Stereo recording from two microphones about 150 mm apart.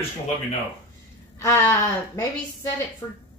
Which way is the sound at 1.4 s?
20° left (ahead or behind).